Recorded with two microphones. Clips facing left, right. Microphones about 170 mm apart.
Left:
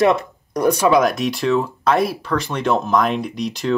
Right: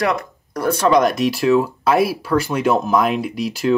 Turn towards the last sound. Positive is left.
turn(degrees=-5)  # may be behind; listen again after turning